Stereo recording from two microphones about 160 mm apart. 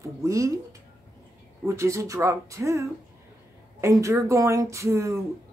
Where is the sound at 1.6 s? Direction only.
15° right (ahead or behind).